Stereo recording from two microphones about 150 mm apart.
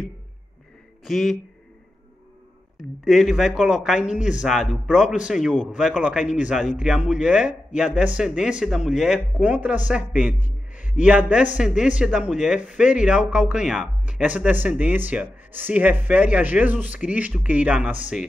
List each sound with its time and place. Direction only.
1.0 s speech: centre (ahead or behind)
2.8 s a man's voice: centre (ahead or behind)
10.4 s a sound: 55° left (ahead or behind)
10.9 s speech: 10° right (ahead or behind)